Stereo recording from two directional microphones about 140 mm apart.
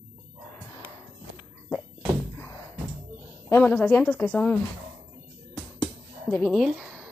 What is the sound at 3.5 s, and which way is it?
Speech, 10° left (ahead or behind).